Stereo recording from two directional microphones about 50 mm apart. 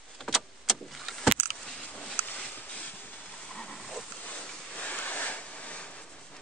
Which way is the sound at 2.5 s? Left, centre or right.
Left.